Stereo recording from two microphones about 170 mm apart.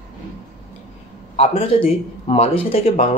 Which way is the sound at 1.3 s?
35° left (ahead or behind).